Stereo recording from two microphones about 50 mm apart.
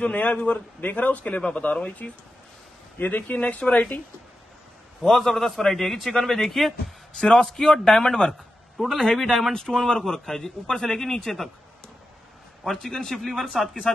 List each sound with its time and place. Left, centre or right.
0.0 s a man's voice: left
5.1 s a man's voice: centre
8.7 s a man's voice: centre
12.6 s a man's voice: centre